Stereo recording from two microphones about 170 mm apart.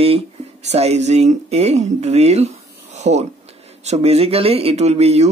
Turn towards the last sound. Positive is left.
turn(degrees=-40)  # may be behind; listen again after turning